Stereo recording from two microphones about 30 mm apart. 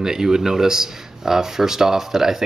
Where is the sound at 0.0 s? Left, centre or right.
Centre.